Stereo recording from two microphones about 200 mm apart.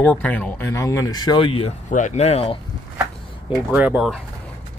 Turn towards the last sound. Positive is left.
turn(degrees=-5)  # may be behind; listen again after turning